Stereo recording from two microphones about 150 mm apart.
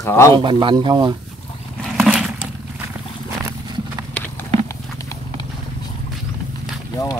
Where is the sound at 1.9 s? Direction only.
5° right (ahead or behind).